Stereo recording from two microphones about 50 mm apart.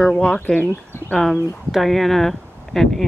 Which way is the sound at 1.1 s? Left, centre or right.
Centre.